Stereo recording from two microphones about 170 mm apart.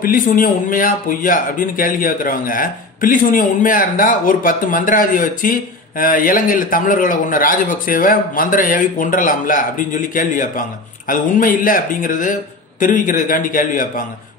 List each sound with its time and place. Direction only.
0.0 s a man's voice: 55° left (ahead or behind)